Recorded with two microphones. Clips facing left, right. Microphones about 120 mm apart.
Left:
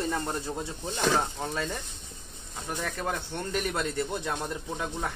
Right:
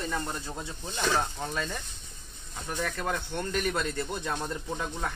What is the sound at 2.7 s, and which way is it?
Speech, 15° left (ahead or behind).